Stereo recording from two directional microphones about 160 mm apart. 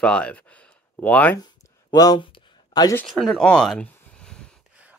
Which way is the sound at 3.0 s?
Centre (ahead or behind).